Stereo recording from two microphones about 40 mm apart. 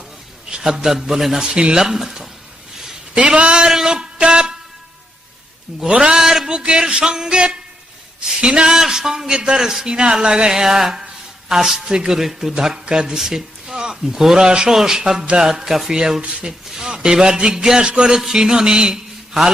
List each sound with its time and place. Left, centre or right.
0.5 s a man's voice: centre
3.3 s a man's voice: centre
3.7 s a sound: centre
5.8 s a man's voice: centre
10.6 s a sound: centre
11.5 s a man's voice: centre
15.9 s a man's voice: centre
18.1 s mantra: centre